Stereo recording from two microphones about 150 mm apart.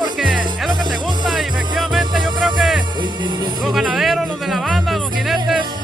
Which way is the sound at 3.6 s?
Centre (ahead or behind).